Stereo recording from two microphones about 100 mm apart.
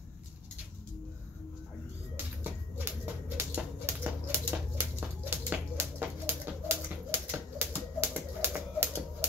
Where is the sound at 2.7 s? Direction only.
15° right (ahead or behind).